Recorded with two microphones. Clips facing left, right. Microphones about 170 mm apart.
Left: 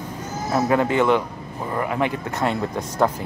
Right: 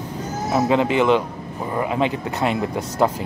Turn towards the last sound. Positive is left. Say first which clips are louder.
# right 1 dB
turn(degrees=-15)  # may be behind; listen again after turning